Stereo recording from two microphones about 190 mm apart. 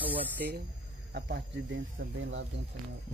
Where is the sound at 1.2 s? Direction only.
60° right (ahead or behind).